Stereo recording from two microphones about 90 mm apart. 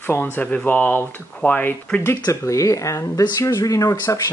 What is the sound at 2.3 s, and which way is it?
Speech, 35° left (ahead or behind).